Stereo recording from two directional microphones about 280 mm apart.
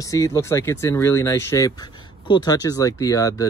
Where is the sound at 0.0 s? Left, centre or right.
Centre.